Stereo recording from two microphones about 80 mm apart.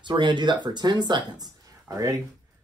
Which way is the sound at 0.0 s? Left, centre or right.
Right.